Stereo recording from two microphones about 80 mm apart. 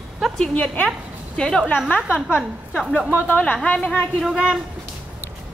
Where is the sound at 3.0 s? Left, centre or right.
Centre.